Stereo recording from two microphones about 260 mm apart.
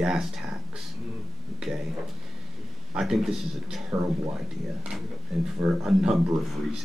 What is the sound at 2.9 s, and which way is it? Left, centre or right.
Speech, centre.